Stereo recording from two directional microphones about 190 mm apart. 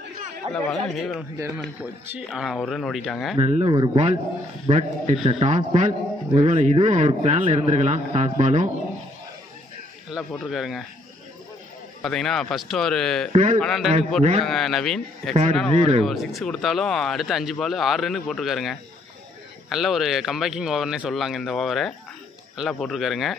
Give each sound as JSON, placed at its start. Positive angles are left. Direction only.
{"t": 0.6, "sound": "speech", "side_deg": 5}
{"t": 3.3, "sound": "speech", "side_deg": -35}
{"t": 10.1, "sound": "speech", "side_deg": 0}
{"t": 12.0, "sound": "speech", "side_deg": 0}
{"t": 13.3, "sound": "speech", "side_deg": -40}
{"t": 13.6, "sound": "speech", "side_deg": 0}